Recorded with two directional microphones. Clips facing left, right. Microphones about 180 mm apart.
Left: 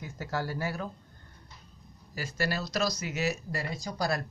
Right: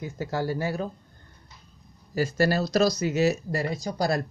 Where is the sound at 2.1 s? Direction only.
35° right (ahead or behind).